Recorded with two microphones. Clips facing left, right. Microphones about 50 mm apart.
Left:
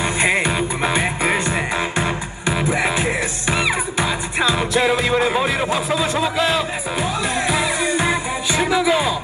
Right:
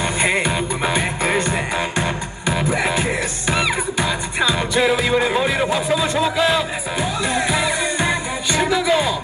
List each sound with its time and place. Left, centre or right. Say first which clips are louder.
0.0 s music: left 1 dB; centre